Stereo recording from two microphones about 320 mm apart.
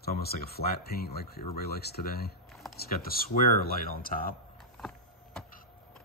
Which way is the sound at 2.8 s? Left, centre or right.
Left.